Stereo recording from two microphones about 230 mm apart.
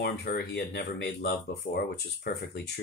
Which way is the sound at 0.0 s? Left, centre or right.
Left.